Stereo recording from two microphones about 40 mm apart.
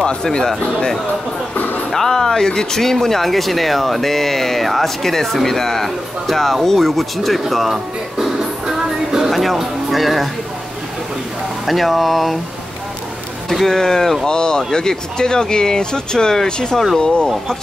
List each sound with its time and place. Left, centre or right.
0.0 s speech: centre
1.5 s music: left
1.9 s speech: centre
11.6 s speech: centre
13.5 s speech: centre